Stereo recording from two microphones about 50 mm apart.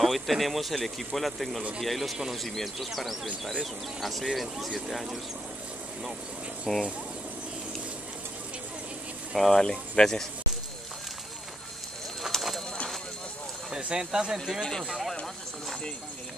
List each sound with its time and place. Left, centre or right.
0.0 s a man's voice: centre
6.7 s a man's voice: centre
9.3 s speech: centre
12.3 s clip-clop: centre
13.7 s speech: centre
14.6 s speech: centre
14.9 s a man's voice: centre